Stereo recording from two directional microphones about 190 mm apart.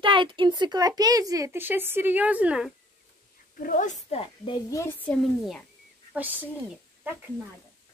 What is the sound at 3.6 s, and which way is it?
Speech, 45° left (ahead or behind).